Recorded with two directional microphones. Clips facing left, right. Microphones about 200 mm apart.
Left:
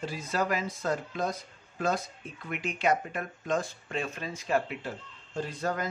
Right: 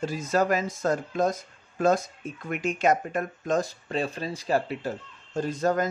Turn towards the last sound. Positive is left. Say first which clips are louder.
# right 7 dB
turn(degrees=-45)  # may be behind; listen again after turning